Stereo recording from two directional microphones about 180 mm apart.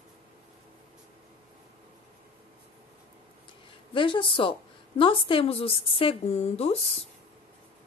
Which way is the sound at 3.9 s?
30° left (ahead or behind).